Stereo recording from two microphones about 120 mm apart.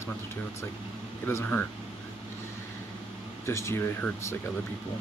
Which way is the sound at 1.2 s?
20° left (ahead or behind).